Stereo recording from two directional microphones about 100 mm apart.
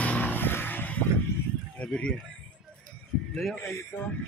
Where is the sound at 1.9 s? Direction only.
10° left (ahead or behind).